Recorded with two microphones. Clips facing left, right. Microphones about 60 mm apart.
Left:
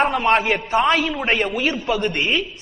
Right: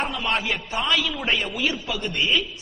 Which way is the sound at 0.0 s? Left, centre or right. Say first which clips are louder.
Left 8 dB; left.